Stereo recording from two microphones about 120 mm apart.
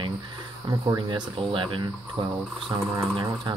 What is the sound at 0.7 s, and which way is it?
Speech, 35° right (ahead or behind).